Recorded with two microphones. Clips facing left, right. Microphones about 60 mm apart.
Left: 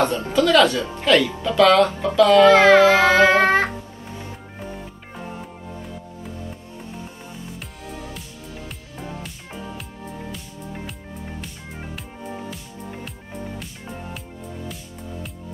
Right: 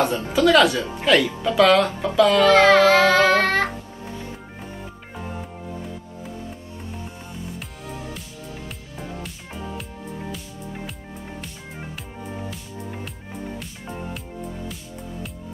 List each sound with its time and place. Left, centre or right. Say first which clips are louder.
0.1 s speech: even; centre
2.3 s music: left 4 dB; centre
8.1 s music: right 1 dB; centre